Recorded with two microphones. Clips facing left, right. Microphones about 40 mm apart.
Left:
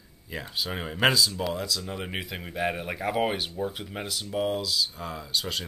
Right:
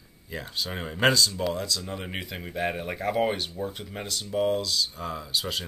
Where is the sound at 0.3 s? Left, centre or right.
Centre.